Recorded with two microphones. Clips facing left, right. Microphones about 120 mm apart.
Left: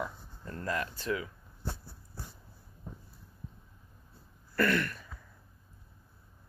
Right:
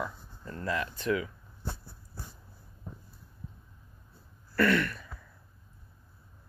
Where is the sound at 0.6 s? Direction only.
40° left (ahead or behind).